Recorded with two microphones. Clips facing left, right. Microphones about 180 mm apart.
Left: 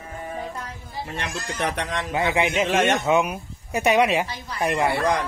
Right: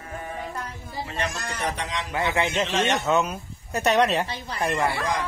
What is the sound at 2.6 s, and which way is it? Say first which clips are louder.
Speech: left 4 dB; 50° left (ahead or behind).